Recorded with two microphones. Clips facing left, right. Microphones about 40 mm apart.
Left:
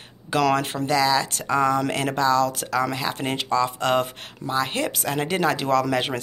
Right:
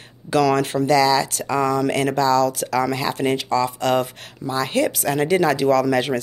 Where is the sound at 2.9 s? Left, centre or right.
Centre.